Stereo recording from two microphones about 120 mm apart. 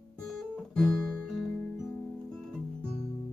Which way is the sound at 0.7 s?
5° left (ahead or behind).